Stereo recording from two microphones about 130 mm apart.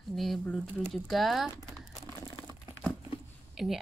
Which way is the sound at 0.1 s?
Centre (ahead or behind).